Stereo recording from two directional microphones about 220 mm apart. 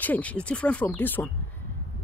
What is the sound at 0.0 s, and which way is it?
Speech, 5° left (ahead or behind).